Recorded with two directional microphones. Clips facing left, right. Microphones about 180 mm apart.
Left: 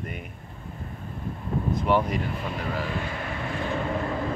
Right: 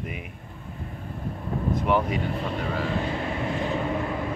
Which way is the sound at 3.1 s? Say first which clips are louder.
Right 4 dB; 25° right (ahead or behind).